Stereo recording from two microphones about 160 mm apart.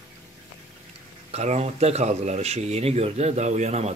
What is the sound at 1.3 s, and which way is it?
Speech, 45° right (ahead or behind).